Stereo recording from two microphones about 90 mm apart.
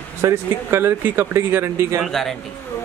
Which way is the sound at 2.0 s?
5° left (ahead or behind).